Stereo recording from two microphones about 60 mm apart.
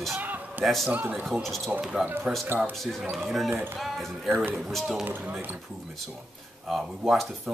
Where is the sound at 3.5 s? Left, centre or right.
Right.